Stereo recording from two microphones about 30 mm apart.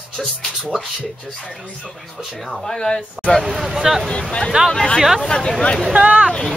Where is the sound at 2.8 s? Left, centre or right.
Left.